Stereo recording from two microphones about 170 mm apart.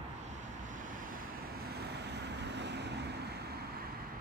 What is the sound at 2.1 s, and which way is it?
Vehicle, 85° right.